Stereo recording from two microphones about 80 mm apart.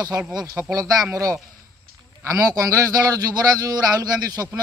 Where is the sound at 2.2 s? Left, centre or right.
Right.